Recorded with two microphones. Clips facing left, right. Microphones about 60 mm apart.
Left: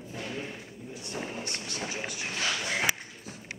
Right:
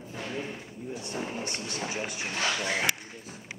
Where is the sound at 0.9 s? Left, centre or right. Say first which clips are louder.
Right 2 dB; right.